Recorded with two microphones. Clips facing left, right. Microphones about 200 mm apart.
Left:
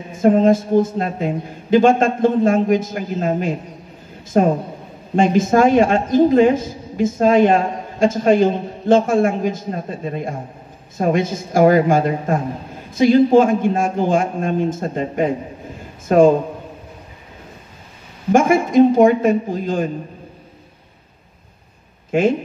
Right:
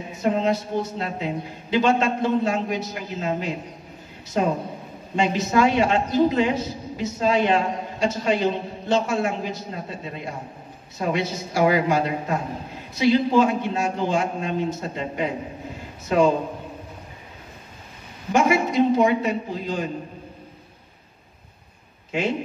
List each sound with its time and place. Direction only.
0.1 s a woman's voice: 50° left (ahead or behind)
18.3 s a woman's voice: 50° left (ahead or behind)
22.1 s a woman's voice: 50° left (ahead or behind)